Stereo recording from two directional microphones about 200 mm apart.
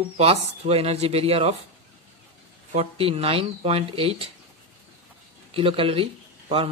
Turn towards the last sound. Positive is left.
turn(degrees=-30)  # may be behind; listen again after turning